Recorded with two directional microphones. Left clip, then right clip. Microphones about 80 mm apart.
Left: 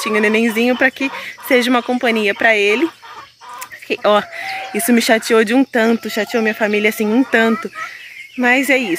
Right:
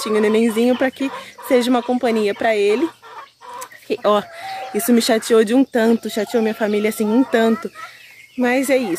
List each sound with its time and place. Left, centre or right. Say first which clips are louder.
0.0 s speech: left 2 dB; centre
1.5 s speech: left 2 dB; centre
3.5 s chicken: left 2 dB; right
4.4 s speech: left 3 dB; centre
5.9 s speech: left 1 dB; right